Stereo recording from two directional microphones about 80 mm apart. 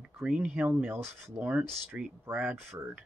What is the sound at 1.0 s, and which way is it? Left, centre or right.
Speech, right.